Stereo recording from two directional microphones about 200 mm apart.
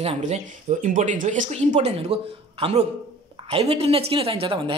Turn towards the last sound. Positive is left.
turn(degrees=-25)  # may be behind; listen again after turning